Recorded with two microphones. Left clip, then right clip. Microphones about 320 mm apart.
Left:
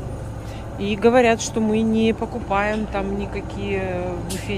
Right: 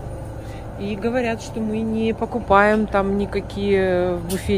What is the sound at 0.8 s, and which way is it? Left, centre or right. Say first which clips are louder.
Speech: left 7 dB; centre.